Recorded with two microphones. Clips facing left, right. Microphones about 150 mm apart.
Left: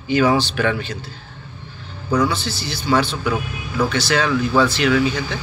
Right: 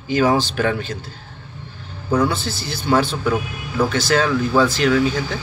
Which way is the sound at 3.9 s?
45° right (ahead or behind).